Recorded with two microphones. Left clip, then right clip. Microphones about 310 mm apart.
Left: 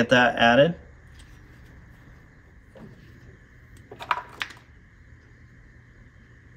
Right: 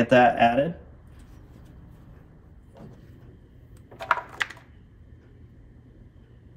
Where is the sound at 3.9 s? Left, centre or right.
Centre.